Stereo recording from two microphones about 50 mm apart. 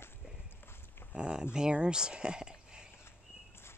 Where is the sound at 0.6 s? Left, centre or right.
Left.